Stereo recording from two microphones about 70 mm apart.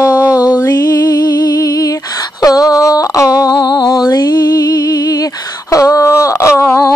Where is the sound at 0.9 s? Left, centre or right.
Left.